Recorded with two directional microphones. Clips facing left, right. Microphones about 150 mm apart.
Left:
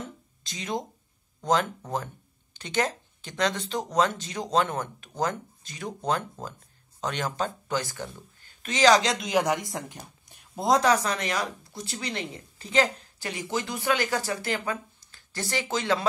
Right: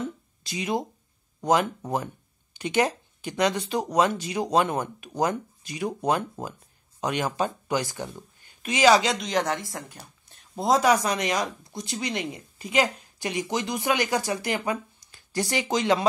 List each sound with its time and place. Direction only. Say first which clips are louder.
0.4 s speech: right 4 dB; 10° right (ahead or behind); by 10.4 s 15° left (ahead or behind)
10.5 s speech: right 1 dB; centre (ahead or behind)
10.8 s speech: right 2 dB; 10° right (ahead or behind)